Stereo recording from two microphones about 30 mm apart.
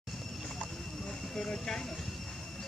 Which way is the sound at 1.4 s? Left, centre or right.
Centre.